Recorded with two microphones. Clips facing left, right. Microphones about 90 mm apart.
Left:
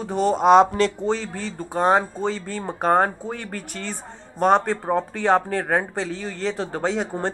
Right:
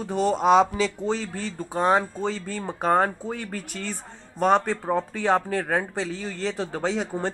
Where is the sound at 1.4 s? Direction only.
20° left (ahead or behind).